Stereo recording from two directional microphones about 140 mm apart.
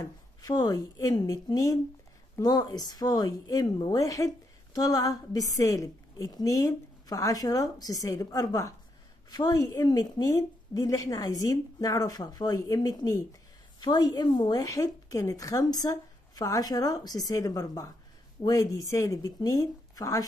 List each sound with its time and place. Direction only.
0.4 s a woman's voice: 25° left (ahead or behind)